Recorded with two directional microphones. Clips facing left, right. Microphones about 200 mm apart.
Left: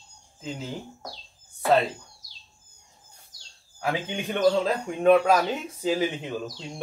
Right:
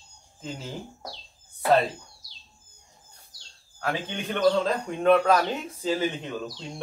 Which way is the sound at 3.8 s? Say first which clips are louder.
Left 2 dB; 15° left (ahead or behind).